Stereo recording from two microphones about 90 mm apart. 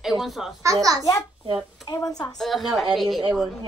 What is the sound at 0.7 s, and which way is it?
Speech, 40° right (ahead or behind).